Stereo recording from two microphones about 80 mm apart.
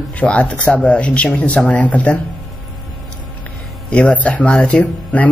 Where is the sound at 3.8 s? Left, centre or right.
Centre.